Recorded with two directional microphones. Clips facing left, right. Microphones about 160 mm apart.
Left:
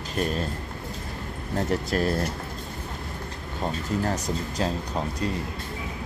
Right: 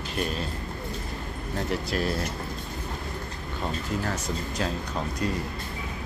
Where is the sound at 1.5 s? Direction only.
45° left (ahead or behind).